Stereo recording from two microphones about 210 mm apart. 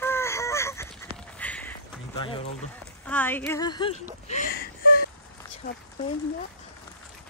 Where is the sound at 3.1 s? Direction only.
10° left (ahead or behind).